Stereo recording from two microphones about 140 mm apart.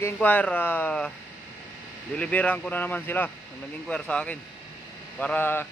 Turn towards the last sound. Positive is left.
turn(degrees=15)  # may be behind; listen again after turning